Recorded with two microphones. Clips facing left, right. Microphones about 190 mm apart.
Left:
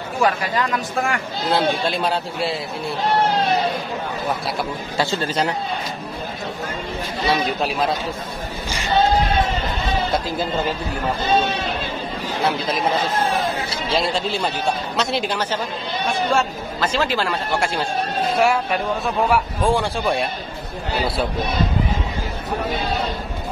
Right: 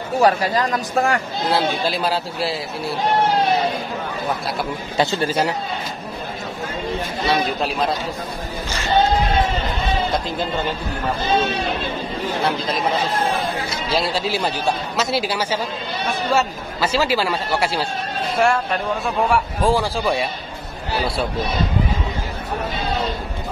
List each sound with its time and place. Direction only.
0.2 s speech: 35° right (ahead or behind)
1.5 s a man's voice: centre (ahead or behind)
4.9 s speech: 20° right (ahead or behind)
7.2 s a man's voice: centre (ahead or behind)
8.6 s a sound: 15° left (ahead or behind)
12.4 s a man's voice: centre (ahead or behind)
13.9 s a man's voice: centre (ahead or behind)
18.4 s a man's voice: 5° left (ahead or behind)